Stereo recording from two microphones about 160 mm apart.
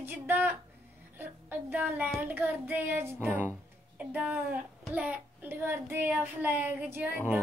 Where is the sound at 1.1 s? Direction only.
10° right (ahead or behind).